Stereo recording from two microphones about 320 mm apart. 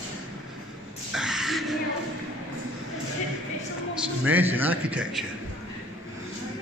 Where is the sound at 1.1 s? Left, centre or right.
Centre.